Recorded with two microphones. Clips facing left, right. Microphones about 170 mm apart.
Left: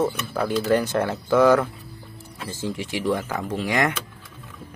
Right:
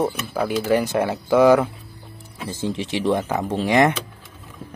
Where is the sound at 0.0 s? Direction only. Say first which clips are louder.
Right 1 dB; 10° right (ahead or behind); by 3.9 s 25° right (ahead or behind).